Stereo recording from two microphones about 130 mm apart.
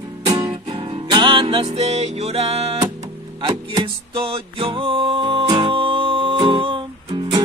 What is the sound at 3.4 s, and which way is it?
Music, 40° right (ahead or behind).